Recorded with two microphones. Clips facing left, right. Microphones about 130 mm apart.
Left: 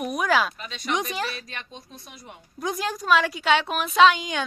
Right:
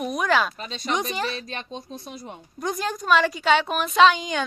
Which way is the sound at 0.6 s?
30° right (ahead or behind).